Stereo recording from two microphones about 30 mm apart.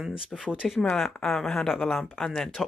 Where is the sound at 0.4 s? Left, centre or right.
Right.